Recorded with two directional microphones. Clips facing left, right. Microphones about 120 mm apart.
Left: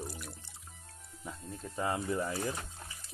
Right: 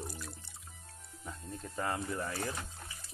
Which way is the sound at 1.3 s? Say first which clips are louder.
Left 1 dB; centre (ahead or behind).